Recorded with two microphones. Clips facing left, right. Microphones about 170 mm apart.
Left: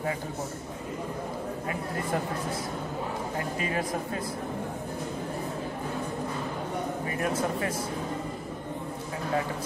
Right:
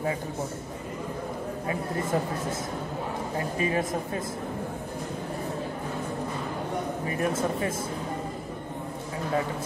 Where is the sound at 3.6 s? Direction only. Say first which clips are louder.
Right 5 dB; 25° right (ahead or behind).